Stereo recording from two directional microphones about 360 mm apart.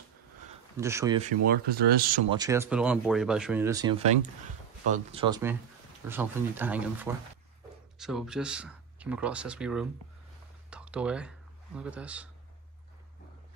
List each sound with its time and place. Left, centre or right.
0.7 s speech: centre
1.5 s speech: right
2.3 s speech: centre